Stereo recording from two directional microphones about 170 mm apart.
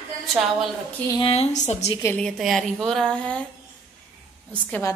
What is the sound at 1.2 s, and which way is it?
Speech, 35° left (ahead or behind).